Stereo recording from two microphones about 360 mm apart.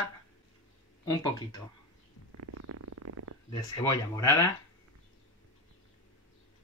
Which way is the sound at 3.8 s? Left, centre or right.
Centre.